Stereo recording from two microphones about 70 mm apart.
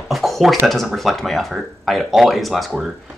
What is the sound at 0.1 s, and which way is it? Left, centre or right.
Speech, centre.